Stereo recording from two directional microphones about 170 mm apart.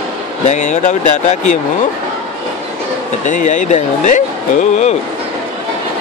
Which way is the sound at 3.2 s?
45° left (ahead or behind).